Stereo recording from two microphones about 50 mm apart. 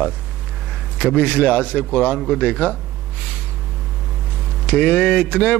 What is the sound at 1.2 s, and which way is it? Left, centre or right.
A man's voice, centre.